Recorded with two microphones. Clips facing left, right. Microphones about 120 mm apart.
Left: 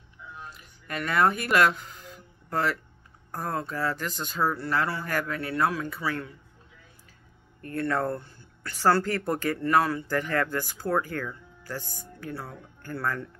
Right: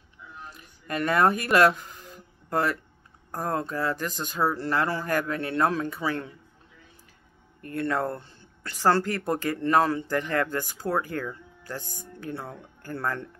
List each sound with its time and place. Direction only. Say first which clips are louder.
0.8 s speech: right 2 dB; 35° right (ahead or behind)
3.5 s speech: right 1 dB; 20° right (ahead or behind)
4.8 s a man's voice: right 3 dB; 40° right (ahead or behind)
5.1 s speech: right 3 dB; 20° right (ahead or behind)
7.7 s speech: even; 15° right (ahead or behind)